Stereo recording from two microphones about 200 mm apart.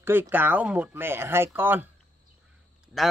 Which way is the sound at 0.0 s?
10° right (ahead or behind).